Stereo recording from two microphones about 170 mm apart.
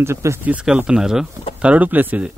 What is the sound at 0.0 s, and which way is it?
Speech, 15° right (ahead or behind).